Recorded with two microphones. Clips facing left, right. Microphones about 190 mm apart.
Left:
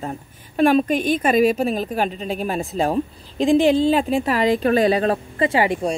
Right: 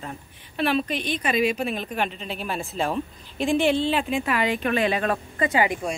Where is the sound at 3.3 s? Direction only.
90° left.